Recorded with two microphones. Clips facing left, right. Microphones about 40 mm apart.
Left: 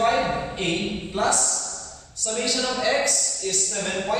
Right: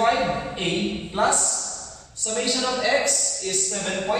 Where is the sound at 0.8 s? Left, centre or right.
Right.